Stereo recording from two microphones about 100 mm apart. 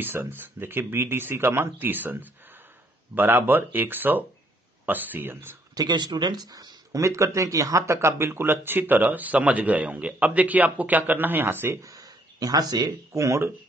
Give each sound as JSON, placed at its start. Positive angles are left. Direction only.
{"t": 0.0, "sound": "speech", "side_deg": -20}
{"t": 5.8, "sound": "speech", "side_deg": -45}
{"t": 11.9, "sound": "speech", "side_deg": -40}